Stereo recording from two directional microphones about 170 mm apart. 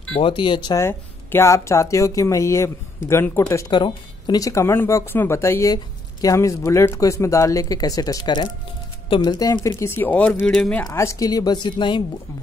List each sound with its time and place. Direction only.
0.2 s speech: 30° left (ahead or behind)
3.7 s speech: 25° left (ahead or behind); by 10.9 s 5° left (ahead or behind)
10.9 s speech: 15° left (ahead or behind)